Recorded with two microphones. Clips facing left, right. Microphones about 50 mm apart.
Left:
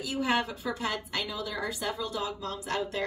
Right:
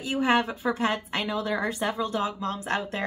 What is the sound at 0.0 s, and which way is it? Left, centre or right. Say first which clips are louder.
A woman's voice: right 5 dB; right.